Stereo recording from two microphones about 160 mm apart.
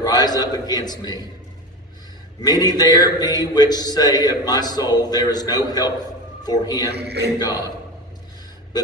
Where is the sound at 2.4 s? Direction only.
25° left (ahead or behind).